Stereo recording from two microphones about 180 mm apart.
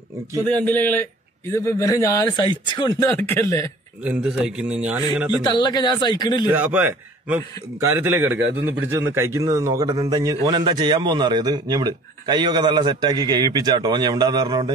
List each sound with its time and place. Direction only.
0.6 s speech: 10° left (ahead or behind)
4.0 s a man's voice: 5° right (ahead or behind)
5.4 s a man's voice: 25° left (ahead or behind)
6.5 s a man's voice: 10° right (ahead or behind); by 14.7 s 25° right (ahead or behind)